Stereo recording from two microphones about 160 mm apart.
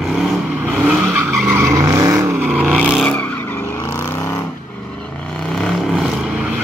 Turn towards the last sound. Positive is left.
turn(degrees=0)  # may be behind; listen again after turning